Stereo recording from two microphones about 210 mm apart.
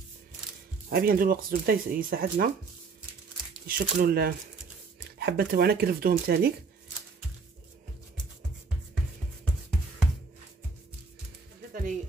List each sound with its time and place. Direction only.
0.8 s speech: 45° right (ahead or behind)
3.6 s speech: 45° right (ahead or behind)